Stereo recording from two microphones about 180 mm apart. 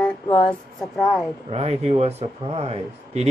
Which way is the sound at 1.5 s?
35° right (ahead or behind).